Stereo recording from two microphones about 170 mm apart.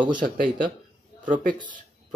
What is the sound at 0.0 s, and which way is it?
Speech, 25° right (ahead or behind).